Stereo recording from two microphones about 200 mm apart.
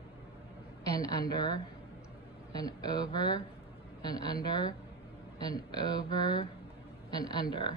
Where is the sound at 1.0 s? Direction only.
20° left (ahead or behind).